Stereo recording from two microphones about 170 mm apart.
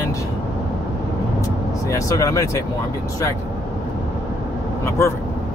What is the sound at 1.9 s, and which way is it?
Speech, 20° left (ahead or behind).